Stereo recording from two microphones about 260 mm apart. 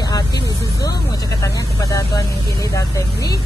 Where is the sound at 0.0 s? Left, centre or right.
Centre.